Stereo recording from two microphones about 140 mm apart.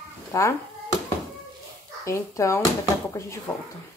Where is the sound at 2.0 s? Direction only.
20° left (ahead or behind).